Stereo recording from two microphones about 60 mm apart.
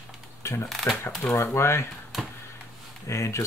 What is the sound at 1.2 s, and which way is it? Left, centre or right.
Speech, left.